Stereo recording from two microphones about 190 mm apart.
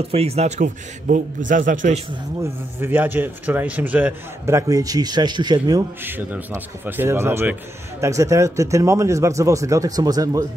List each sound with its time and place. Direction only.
0.1 s a man's voice: 30° right (ahead or behind)
2.4 s a man's voice: 10° right (ahead or behind)